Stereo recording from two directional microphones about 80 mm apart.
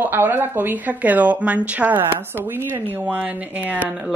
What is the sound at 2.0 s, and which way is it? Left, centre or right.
A woman's voice, right.